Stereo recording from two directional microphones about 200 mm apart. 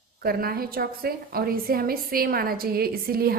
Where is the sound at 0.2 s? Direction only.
50° right (ahead or behind).